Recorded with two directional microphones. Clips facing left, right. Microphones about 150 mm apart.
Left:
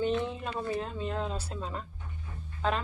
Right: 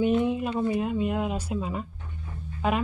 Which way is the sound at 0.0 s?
15° right (ahead or behind).